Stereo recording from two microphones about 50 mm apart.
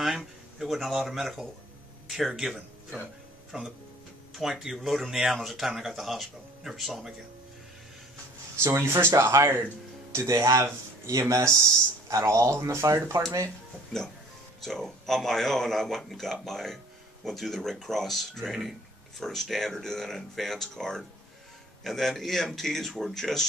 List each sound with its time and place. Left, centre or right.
0.0 s speech: centre
3.5 s speech: centre
4.3 s speech: centre
8.6 s speech: right
11.1 s speech: right
14.6 s speech: centre